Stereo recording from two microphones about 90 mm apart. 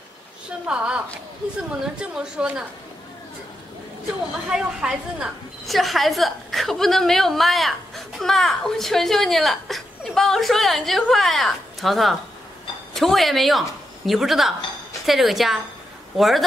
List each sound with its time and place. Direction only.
0.5 s a woman's voice: 10° right (ahead or behind)
4.5 s a woman's voice: 10° right (ahead or behind)